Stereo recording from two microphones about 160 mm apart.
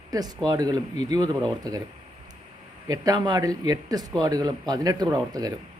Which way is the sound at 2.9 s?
25° right (ahead or behind).